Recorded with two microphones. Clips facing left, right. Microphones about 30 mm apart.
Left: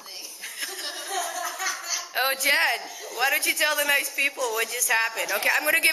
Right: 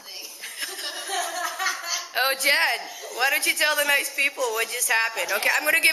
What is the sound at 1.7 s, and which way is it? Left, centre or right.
A woman's voice, centre.